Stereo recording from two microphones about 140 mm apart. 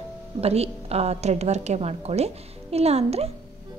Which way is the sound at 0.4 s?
45° right (ahead or behind).